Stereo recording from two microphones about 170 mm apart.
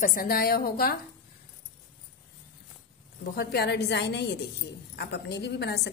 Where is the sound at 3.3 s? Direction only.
70° left (ahead or behind).